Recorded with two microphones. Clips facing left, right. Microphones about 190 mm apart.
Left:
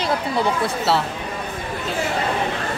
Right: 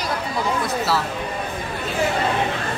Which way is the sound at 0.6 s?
30° left (ahead or behind).